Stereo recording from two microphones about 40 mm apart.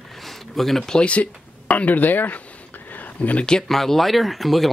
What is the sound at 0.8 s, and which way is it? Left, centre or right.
Speech, left.